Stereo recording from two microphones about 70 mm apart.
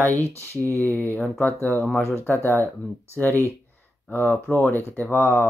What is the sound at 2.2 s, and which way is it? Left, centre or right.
Speech, left.